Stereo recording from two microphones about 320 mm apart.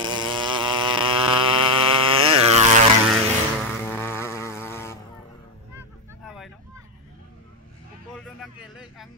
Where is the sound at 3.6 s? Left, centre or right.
Centre.